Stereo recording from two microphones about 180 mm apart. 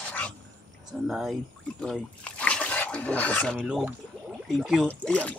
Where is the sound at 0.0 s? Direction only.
10° left (ahead or behind).